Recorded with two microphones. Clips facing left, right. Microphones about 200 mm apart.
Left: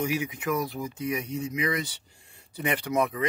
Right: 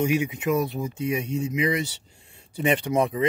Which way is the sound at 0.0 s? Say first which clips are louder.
Right 5 dB; 25° right (ahead or behind).